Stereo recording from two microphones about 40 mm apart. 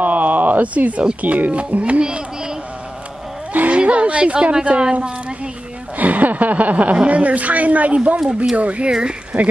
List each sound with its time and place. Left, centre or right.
0.0 s a sound: right
1.2 s speech: right
3.7 s a woman's voice: right
5.9 s a woman's voice: right